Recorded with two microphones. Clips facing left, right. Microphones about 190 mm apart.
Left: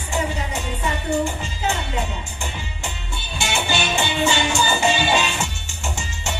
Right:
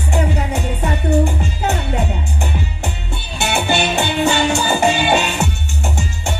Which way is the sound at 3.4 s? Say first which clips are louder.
Right 6 dB; 60° right (ahead or behind).